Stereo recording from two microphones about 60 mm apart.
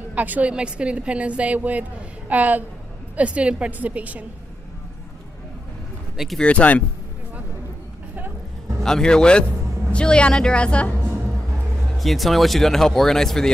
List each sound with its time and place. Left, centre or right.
0.1 s a woman's voice: right
6.1 s speech: centre
6.4 s speech: left
8.8 s speech: centre
12.0 s speech: centre